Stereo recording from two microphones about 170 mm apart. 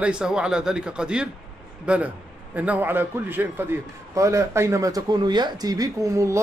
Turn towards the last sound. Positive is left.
turn(degrees=-15)  # may be behind; listen again after turning